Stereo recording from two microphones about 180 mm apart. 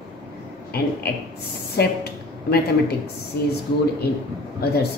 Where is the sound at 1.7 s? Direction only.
60° left (ahead or behind).